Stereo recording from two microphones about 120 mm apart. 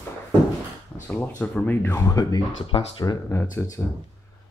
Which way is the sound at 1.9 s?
30° left (ahead or behind).